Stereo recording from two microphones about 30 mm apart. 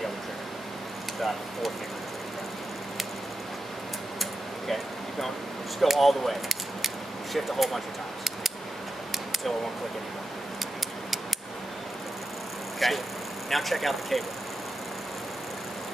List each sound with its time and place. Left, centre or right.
4.2 s a sound: centre
5.8 s speech: centre
12.7 s vehicle: centre
13.5 s speech: centre